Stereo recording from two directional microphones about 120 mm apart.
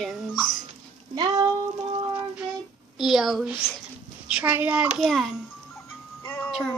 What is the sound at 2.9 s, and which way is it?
Child singing, centre (ahead or behind).